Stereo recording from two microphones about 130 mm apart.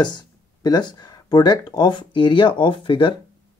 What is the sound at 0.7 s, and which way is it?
Speech, 30° left (ahead or behind).